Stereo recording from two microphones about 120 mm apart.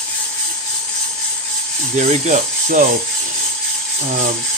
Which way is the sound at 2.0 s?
90° right.